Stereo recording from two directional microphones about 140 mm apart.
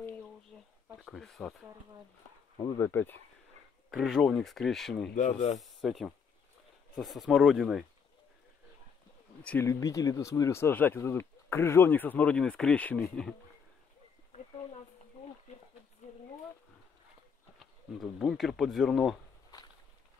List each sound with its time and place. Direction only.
0.9 s speech: centre (ahead or behind)
2.6 s speech: 20° left (ahead or behind)
3.9 s speech: centre (ahead or behind)
9.4 s speech: 10° left (ahead or behind)
17.9 s speech: centre (ahead or behind)